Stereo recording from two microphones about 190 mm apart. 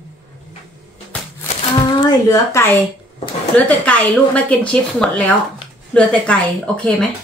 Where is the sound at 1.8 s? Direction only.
20° left (ahead or behind); by 7.1 s 5° left (ahead or behind).